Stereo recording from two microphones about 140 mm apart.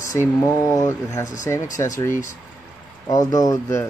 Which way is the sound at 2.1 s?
65° left (ahead or behind).